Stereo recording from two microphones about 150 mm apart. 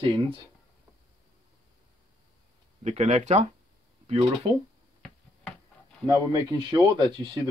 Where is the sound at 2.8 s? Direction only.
45° right (ahead or behind).